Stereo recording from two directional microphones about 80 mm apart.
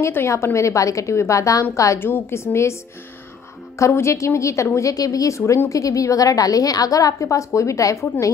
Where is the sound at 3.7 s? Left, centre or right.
Left.